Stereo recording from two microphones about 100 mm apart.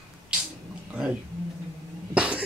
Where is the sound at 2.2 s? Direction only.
10° right (ahead or behind).